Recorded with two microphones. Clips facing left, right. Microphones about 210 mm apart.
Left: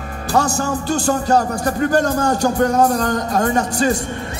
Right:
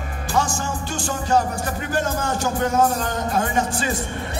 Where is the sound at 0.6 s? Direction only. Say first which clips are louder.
Left 8 dB; 40° left (ahead or behind).